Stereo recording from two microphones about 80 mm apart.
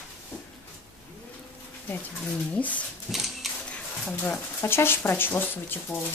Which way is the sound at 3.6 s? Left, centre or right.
Centre.